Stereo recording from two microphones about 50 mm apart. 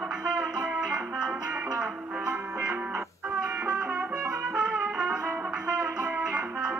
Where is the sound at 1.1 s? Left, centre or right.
Centre.